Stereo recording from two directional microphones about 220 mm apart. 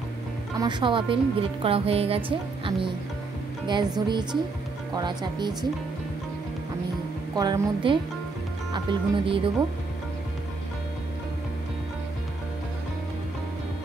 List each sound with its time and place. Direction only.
0.6 s a woman's voice: 20° right (ahead or behind)
7.3 s a woman's voice: 20° right (ahead or behind)